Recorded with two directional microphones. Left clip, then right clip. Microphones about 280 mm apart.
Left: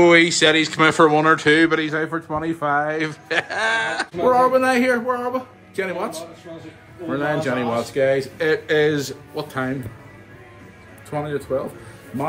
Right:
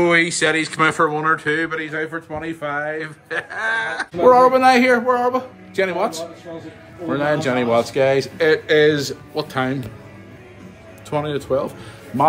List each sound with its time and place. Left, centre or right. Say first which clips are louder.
0.0 s speech: left 3 dB; centre
2.1 s a man's voice: left 3 dB; right
2.4 s speech: left 4 dB; centre
4.2 s a man's voice: right 5 dB; centre
11.1 s a man's voice: right 3 dB; centre